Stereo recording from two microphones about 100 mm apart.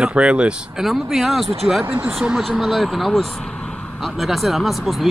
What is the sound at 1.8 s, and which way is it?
Speech, 20° right (ahead or behind).